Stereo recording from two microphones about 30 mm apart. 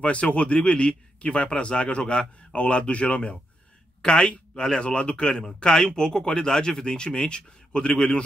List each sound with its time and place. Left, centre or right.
0.0 s a man's voice: left
4.0 s speech: left
4.8 s a man's voice: left
5.1 s speech: left